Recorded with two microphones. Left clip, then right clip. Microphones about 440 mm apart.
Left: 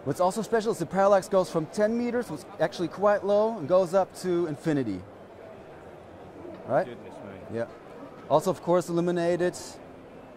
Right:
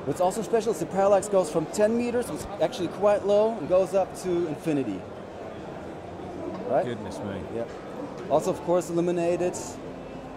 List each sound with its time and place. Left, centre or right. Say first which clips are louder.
0.1 s speech: right 1 dB; left
6.7 s speech: right 1 dB; left
8.3 s speech: even; left